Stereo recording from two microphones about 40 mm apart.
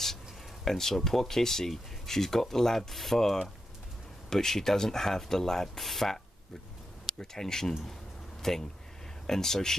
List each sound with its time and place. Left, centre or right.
0.7 s speech: centre